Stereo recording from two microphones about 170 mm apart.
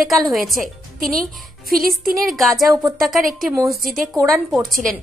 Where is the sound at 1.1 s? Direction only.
55° right (ahead or behind).